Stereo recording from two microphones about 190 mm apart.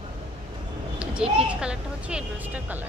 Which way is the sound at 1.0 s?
5° right (ahead or behind).